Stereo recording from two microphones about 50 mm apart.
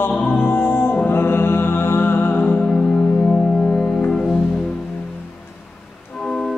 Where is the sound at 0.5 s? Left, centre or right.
Left.